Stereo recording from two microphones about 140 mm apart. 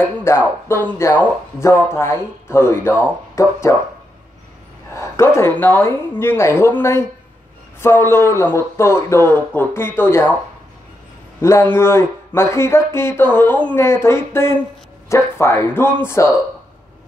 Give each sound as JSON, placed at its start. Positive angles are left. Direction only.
{"t": 0.3, "sound": "a man's voice", "side_deg": 20}
{"t": 4.9, "sound": "a man's voice", "side_deg": 20}
{"t": 11.7, "sound": "a man's voice", "side_deg": 20}